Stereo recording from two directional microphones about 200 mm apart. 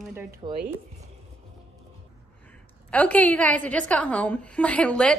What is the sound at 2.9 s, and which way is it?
A woman's voice, 5° left (ahead or behind).